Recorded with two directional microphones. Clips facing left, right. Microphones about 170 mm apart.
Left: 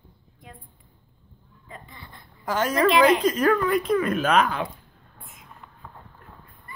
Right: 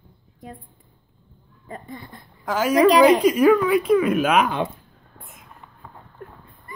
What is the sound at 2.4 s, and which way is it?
A woman's voice, 5° right (ahead or behind).